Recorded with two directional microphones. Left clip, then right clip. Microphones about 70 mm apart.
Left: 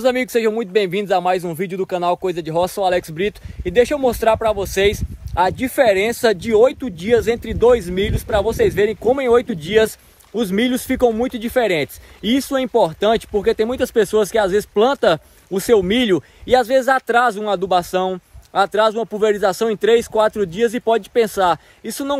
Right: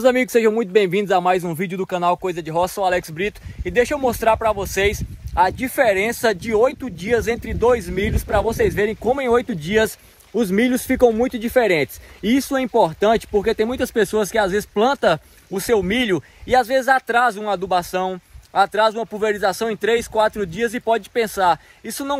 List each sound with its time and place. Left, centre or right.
0.0 s speech: centre